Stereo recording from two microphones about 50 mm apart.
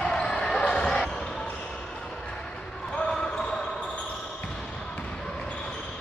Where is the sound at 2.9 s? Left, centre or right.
Centre.